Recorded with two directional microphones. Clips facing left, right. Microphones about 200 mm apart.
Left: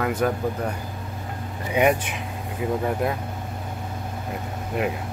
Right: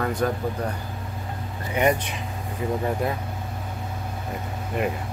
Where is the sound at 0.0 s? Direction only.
5° left (ahead or behind).